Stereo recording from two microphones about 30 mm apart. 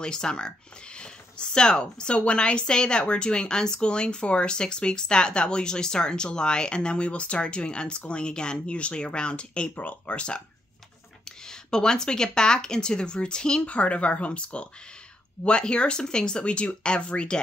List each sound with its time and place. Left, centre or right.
0.0 s speech: left
9.8 s speech: left
10.1 s speech: left
13.6 s speech: left